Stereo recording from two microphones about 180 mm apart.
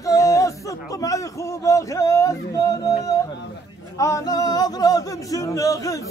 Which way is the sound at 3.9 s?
15° left (ahead or behind).